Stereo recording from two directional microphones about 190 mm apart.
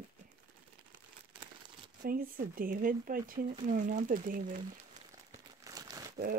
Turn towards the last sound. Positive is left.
turn(degrees=-20)  # may be behind; listen again after turning